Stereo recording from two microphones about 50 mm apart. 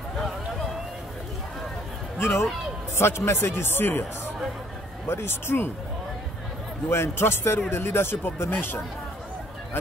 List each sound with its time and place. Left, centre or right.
2.1 s speech: left
5.0 s speech: left
6.9 s speech: left